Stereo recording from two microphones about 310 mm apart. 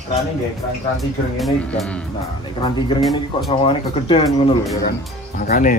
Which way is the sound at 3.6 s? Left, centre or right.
Centre.